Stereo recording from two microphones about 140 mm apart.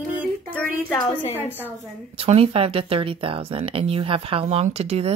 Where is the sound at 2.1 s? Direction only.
45° right (ahead or behind).